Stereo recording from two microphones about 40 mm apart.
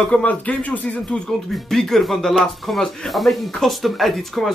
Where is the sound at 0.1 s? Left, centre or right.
Left.